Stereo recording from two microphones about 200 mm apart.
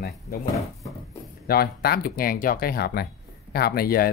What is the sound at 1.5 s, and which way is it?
Speech, 50° left (ahead or behind).